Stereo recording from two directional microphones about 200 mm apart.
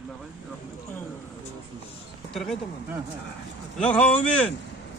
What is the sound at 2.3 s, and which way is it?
Speech, centre (ahead or behind).